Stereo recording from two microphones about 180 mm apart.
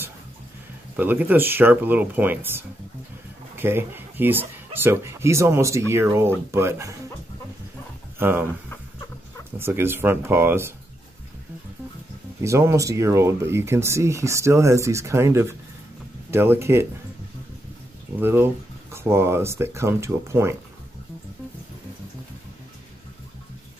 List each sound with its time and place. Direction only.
0.9 s speech: 10° right (ahead or behind)
8.2 s speech: 10° right (ahead or behind)
9.6 s speech: 15° right (ahead or behind)
12.4 s speech: 15° right (ahead or behind)
18.2 s speech: 10° right (ahead or behind)